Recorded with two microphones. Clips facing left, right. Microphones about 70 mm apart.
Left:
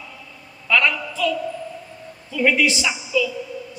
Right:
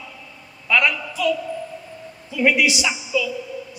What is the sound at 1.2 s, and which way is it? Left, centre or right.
Speech, centre.